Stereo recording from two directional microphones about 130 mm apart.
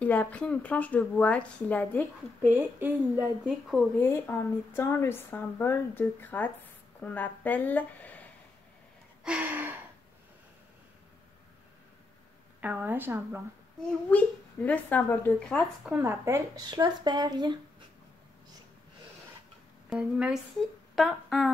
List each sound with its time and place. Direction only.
0.0 s a woman's voice: 10° left (ahead or behind)
2.5 s a woman's voice: 15° right (ahead or behind)
4.0 s a woman's voice: 20° left (ahead or behind)
9.2 s gasp: 10° right (ahead or behind)
12.5 s a woman's voice: 15° right (ahead or behind)
14.1 s a woman's voice: 10° left (ahead or behind)
16.0 s speech: 20° right (ahead or behind)
16.7 s speech: 35° right (ahead or behind)
19.9 s speech: 5° right (ahead or behind)